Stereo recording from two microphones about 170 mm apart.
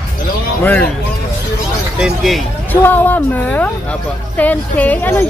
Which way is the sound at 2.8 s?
10° left (ahead or behind).